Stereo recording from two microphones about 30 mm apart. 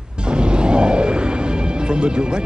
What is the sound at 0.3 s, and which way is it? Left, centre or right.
Music, right.